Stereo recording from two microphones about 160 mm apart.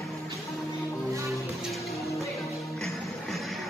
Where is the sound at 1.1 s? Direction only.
20° right (ahead or behind).